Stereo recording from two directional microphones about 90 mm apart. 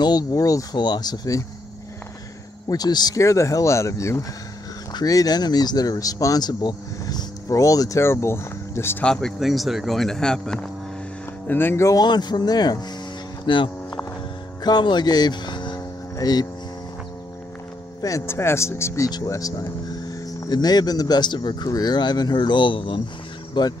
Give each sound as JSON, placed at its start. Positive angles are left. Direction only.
{"t": 0.0, "sound": "speech", "side_deg": 45}
{"t": 2.7, "sound": "speech", "side_deg": 50}
{"t": 3.2, "sound": "speech", "side_deg": 35}
{"t": 4.9, "sound": "speech", "side_deg": 45}
{"t": 8.0, "sound": "speech", "side_deg": 30}
{"t": 9.0, "sound": "speech", "side_deg": 5}
{"t": 11.4, "sound": "speech", "side_deg": 25}
{"t": 12.0, "sound": "speech", "side_deg": 50}
{"t": 13.5, "sound": "a sound", "side_deg": 65}
{"t": 14.6, "sound": "speech", "side_deg": 55}
{"t": 18.2, "sound": "speech", "side_deg": 30}
{"t": 19.0, "sound": "speech", "side_deg": 45}
{"t": 23.6, "sound": "speech", "side_deg": 55}